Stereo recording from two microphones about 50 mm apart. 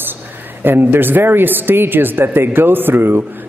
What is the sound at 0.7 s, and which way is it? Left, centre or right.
A man's voice, right.